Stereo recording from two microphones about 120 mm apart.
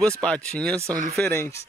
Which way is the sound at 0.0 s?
10° left (ahead or behind).